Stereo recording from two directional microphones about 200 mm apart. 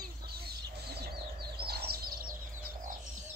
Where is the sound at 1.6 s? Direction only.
50° right (ahead or behind).